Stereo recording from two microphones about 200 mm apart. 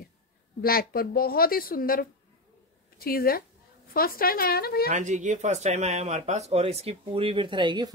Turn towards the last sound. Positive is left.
turn(degrees=-20)  # may be behind; listen again after turning